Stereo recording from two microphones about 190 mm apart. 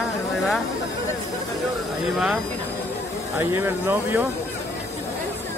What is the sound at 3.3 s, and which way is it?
Speech, 10° right (ahead or behind).